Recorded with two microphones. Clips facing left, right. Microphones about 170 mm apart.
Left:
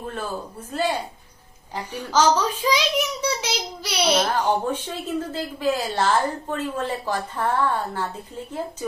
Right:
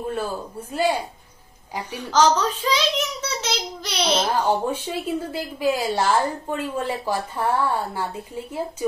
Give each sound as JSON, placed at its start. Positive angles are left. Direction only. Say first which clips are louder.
{"t": 0.0, "sound": "a woman's voice", "louder": "right 3 dB", "side_deg": -10}
{"t": 2.1, "sound": "a child's voice", "louder": "right 1 dB", "side_deg": 10}
{"t": 4.2, "sound": "a woman's voice", "louder": "right 1 dB", "side_deg": -10}